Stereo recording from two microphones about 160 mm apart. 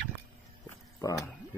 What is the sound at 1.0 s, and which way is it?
Speech, 20° left (ahead or behind).